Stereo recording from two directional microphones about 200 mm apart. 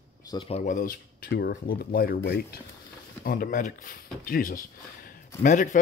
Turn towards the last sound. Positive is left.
turn(degrees=40)  # may be behind; listen again after turning